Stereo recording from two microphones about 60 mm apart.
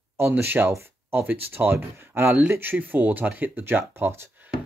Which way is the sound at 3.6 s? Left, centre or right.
Right.